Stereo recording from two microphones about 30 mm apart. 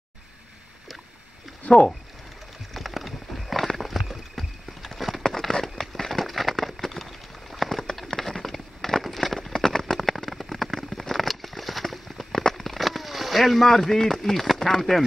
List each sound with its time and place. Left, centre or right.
1.6 s speech: left
2.7 s horse: centre
5.2 s a sound: centre
9.6 s clip-clop: centre
9.9 s a sound: centre
14.6 s speech: centre